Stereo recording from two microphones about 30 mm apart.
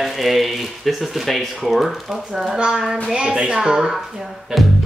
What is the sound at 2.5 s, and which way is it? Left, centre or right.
A woman's voice, right.